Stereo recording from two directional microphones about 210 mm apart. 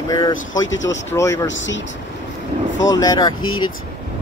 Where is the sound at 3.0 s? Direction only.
20° left (ahead or behind).